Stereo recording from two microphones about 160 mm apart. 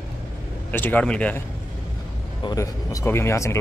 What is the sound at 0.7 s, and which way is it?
Speech, 10° left (ahead or behind).